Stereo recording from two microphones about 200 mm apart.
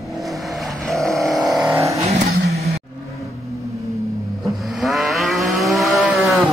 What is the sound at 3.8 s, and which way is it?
Vehicle, 15° right (ahead or behind).